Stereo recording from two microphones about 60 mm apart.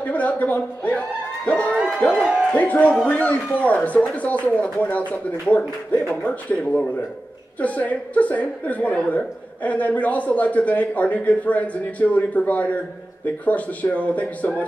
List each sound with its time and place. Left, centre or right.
0.0 s a man's voice: left